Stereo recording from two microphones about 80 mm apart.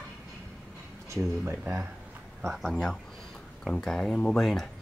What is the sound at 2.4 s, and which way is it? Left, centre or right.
Speech, centre.